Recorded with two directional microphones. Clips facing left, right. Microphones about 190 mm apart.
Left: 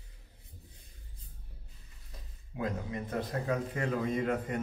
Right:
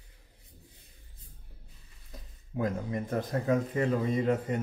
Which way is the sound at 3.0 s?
30° right (ahead or behind).